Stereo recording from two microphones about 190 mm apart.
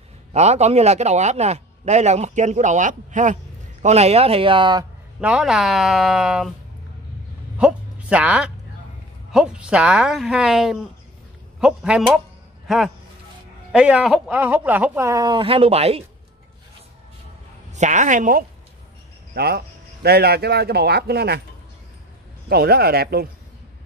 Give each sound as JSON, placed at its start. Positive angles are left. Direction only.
{"t": 0.3, "sound": "a man's voice", "side_deg": -35}
{"t": 5.2, "sound": "speech", "side_deg": -5}
{"t": 7.5, "sound": "a sound", "side_deg": -5}
{"t": 9.3, "sound": "speech", "side_deg": -5}
{"t": 17.7, "sound": "a man's voice", "side_deg": -40}
{"t": 19.3, "sound": "speech", "side_deg": -55}
{"t": 22.5, "sound": "speech", "side_deg": -55}